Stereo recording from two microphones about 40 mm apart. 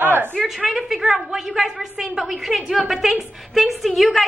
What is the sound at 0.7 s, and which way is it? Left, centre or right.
A woman's voice, centre.